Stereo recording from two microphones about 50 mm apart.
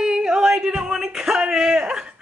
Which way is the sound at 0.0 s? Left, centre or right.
Centre.